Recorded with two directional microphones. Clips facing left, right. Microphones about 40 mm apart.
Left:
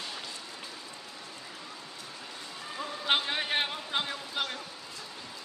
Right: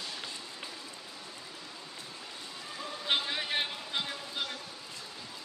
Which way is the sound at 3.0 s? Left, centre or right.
Left.